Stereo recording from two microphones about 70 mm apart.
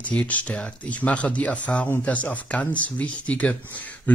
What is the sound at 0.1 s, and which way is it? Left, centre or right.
Speech, left.